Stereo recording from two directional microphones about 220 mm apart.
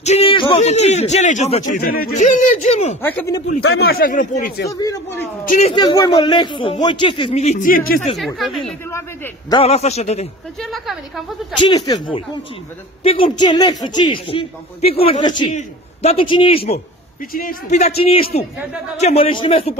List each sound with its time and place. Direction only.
0.0 s speech: 30° left (ahead or behind)
3.0 s a man's voice: 10° left (ahead or behind)
3.9 s speech: 40° left (ahead or behind)
4.6 s a man's voice: 15° left (ahead or behind)
5.4 s speech: 35° left (ahead or behind)
5.8 s a man's voice: 20° left (ahead or behind)
8.6 s a man's voice: 10° left (ahead or behind)
9.6 s a man's voice: 30° left (ahead or behind)
10.6 s a woman's voice: centre (ahead or behind)
11.6 s a man's voice: 20° left (ahead or behind)
17.3 s a man's voice: 40° left (ahead or behind); by 19.7 s 25° left (ahead or behind)